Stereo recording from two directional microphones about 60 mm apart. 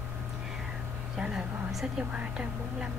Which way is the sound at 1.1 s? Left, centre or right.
Centre.